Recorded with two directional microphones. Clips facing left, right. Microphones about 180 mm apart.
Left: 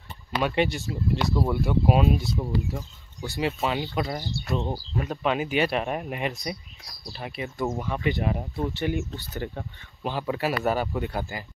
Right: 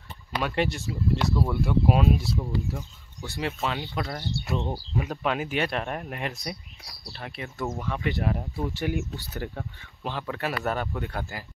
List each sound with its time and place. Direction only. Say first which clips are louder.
0.4 s speech: left 3 dB; centre (ahead or behind); by 4.4 s 15° left (ahead or behind)
4.6 s speech: left 1 dB; centre (ahead or behind)